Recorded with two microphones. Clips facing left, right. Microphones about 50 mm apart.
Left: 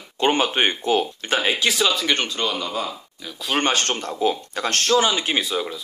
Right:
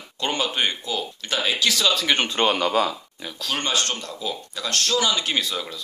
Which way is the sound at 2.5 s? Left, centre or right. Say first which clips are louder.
Right 5 dB; right.